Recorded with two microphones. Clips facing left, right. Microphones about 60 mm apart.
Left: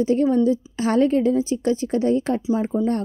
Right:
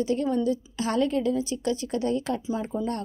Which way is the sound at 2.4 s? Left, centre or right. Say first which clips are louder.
Left 8 dB; centre.